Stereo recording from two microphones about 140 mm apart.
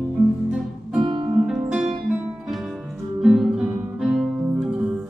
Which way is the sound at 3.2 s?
Centre (ahead or behind).